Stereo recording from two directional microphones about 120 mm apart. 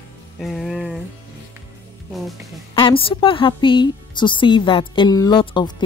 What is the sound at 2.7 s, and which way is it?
A woman's voice, 45° left (ahead or behind).